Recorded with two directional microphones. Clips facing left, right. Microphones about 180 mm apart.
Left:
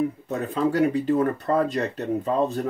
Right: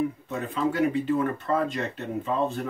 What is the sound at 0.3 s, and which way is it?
Speech, 40° left (ahead or behind).